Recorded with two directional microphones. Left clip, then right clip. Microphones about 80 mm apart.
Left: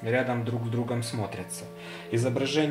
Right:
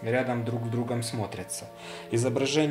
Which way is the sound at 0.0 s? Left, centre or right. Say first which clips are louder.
Left 1 dB; centre.